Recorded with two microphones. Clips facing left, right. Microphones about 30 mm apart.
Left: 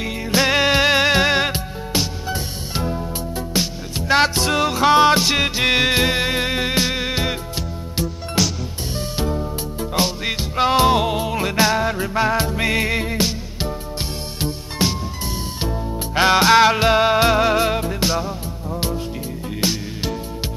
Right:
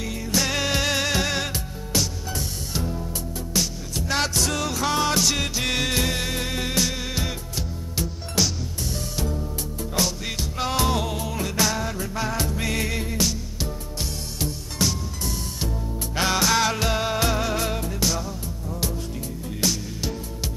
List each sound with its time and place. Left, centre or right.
0.0 s music: left
8.4 s music: centre
8.9 s music: left
16.2 s music: left